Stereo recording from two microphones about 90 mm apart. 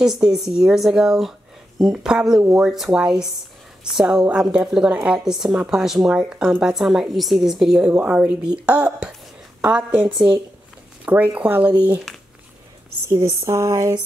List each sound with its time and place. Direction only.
0.0 s a woman's voice: 5° right (ahead or behind)
11.1 s speech: 20° right (ahead or behind)
13.5 s a sound: 35° right (ahead or behind)